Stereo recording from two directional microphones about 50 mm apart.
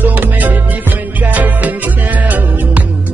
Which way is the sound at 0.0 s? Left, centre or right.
Right.